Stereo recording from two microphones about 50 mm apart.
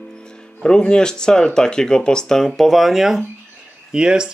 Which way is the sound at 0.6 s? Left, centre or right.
Centre.